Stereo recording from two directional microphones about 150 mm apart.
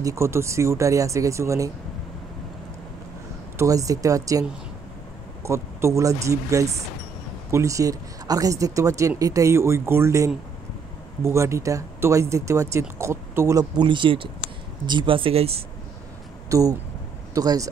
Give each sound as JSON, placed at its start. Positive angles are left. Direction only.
{"t": 0.0, "sound": "speech", "side_deg": -20}
{"t": 3.5, "sound": "speech", "side_deg": -20}
{"t": 16.4, "sound": "speech", "side_deg": -20}